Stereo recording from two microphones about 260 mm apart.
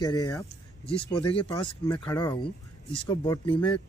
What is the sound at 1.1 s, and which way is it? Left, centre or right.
Speech, centre.